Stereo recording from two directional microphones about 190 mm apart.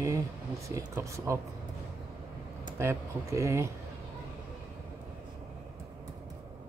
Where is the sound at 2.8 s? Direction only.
15° right (ahead or behind).